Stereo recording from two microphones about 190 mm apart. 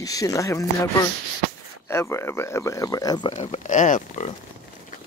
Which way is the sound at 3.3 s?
35° left (ahead or behind).